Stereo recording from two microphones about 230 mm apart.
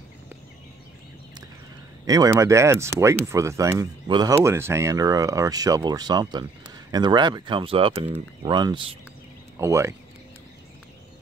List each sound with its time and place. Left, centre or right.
2.0 s speech: centre